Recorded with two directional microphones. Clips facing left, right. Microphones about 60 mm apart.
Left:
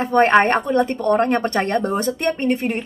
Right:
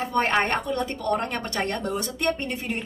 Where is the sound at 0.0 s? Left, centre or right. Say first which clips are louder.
Left 9 dB; left.